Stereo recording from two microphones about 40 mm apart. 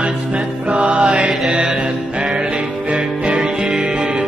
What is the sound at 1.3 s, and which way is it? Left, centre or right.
Mantra, centre.